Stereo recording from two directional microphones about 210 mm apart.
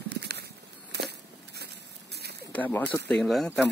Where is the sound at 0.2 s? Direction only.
50° right (ahead or behind).